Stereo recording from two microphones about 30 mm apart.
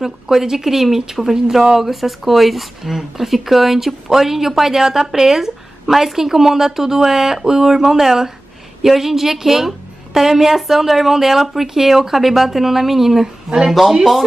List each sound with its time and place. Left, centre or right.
0.0 s a man's voice: centre